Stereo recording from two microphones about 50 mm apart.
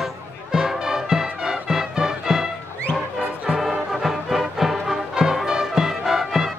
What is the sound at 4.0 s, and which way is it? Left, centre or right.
Music, centre.